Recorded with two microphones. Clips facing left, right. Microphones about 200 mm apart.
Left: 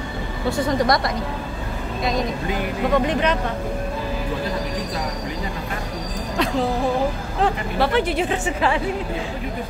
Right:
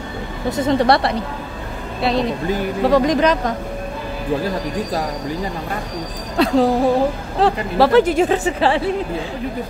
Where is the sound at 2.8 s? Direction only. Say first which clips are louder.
Right 5 dB; 35° right (ahead or behind).